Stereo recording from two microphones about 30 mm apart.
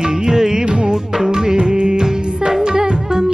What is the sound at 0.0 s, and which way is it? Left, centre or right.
Music, right.